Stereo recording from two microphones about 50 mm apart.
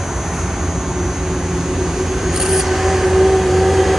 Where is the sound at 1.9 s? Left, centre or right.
Centre.